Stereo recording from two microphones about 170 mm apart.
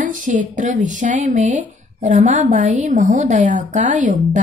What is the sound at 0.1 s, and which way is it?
A woman's voice, 50° right (ahead or behind).